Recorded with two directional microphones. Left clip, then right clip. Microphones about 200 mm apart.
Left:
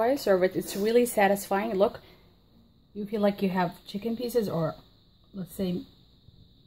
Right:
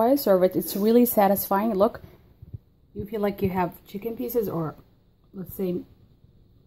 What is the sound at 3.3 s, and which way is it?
Speech, 10° right (ahead or behind).